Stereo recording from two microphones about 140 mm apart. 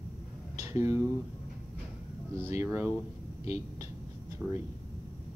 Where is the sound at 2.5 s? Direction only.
15° right (ahead or behind).